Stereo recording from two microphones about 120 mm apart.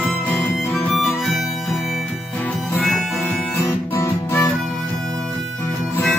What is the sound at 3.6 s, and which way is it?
Guitar, 20° left (ahead or behind).